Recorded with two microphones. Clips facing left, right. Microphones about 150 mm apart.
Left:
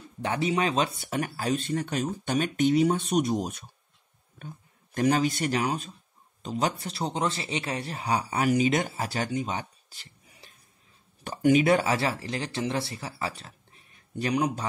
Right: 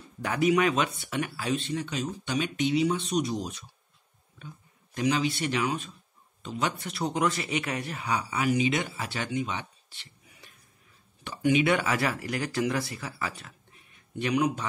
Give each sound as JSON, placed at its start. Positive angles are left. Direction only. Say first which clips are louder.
{"t": 0.2, "sound": "speech", "louder": "right 2 dB", "side_deg": 30}